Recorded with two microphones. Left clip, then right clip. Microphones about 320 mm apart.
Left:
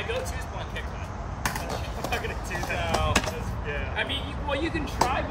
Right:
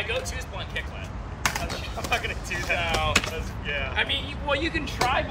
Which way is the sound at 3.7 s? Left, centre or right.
Centre.